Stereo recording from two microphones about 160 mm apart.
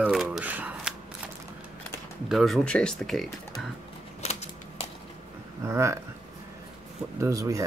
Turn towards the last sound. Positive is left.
turn(degrees=-20)  # may be behind; listen again after turning